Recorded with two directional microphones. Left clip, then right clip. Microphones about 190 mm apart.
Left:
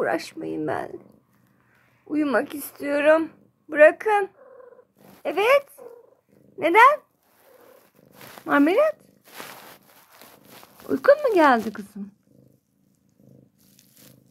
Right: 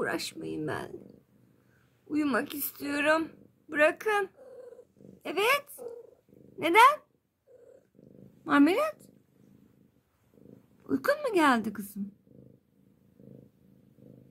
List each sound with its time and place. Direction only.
0.0 s speech: 15° right (ahead or behind)
2.0 s speech: 15° right (ahead or behind)
8.5 s speech: 25° right (ahead or behind)
10.9 s speech: 20° right (ahead or behind)